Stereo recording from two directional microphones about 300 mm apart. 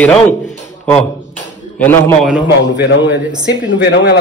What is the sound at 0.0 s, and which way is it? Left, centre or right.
Speech, centre.